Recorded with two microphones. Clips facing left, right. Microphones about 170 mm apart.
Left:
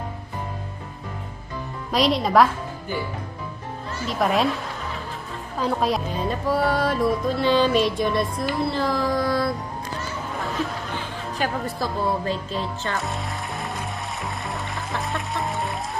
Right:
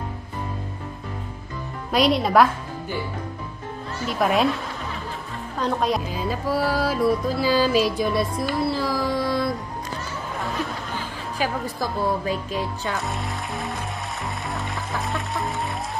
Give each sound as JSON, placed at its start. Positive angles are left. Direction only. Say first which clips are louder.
{"t": 1.9, "sound": "music", "louder": "right 1 dB", "side_deg": 0}
{"t": 4.1, "sound": "music", "louder": "right 1 dB", "side_deg": 0}
{"t": 5.6, "sound": "music", "louder": "even", "side_deg": 0}
{"t": 9.2, "sound": "music", "louder": "left 1 dB", "side_deg": -20}
{"t": 11.6, "sound": "speech", "louder": "even", "side_deg": -15}
{"t": 14.5, "sound": "music", "louder": "right 1 dB", "side_deg": 0}